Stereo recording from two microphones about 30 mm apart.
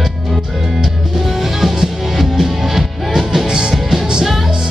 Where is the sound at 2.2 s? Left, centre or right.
Centre.